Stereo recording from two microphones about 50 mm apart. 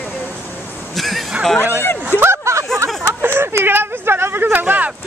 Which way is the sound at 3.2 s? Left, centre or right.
Right.